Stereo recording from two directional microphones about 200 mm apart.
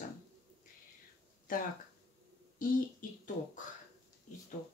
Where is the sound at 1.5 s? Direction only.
45° left (ahead or behind).